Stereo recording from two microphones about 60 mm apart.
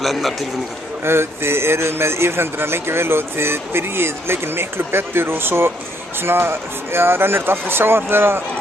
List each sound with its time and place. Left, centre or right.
0.0 s a man's voice: centre
1.0 s a man's voice: right